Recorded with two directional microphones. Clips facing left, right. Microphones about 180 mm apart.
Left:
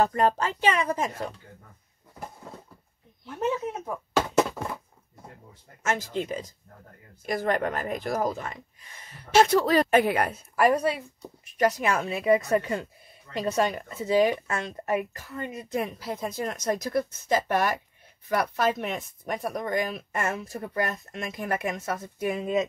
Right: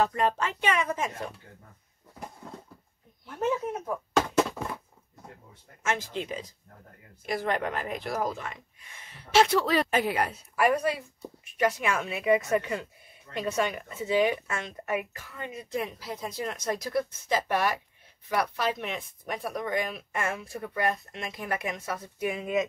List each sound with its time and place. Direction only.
0.0 s a woman's voice: 40° left (ahead or behind)
5.8 s a woman's voice: 40° left (ahead or behind)